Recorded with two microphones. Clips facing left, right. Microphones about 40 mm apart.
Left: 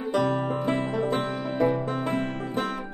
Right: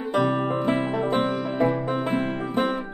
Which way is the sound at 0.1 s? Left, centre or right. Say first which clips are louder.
Right 2 dB; centre.